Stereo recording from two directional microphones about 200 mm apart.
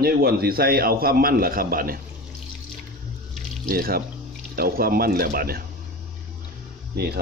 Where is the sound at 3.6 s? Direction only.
50° right (ahead or behind).